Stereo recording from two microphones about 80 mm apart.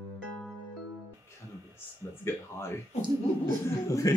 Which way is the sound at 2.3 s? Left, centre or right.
Left.